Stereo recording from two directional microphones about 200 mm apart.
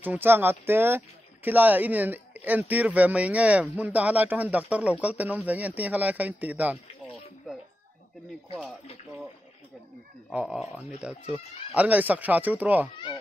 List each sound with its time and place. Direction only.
0.0 s speech: 10° right (ahead or behind)
10.3 s speech: 5° right (ahead or behind)